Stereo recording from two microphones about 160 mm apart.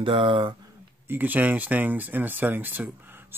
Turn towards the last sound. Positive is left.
turn(degrees=-15)  # may be behind; listen again after turning